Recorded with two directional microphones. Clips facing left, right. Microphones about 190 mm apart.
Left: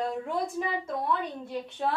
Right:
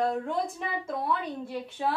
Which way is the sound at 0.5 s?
5° right (ahead or behind).